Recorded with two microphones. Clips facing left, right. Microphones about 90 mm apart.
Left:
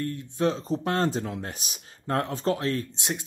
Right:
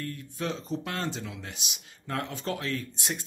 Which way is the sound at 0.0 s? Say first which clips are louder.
Left 8 dB; 30° left (ahead or behind).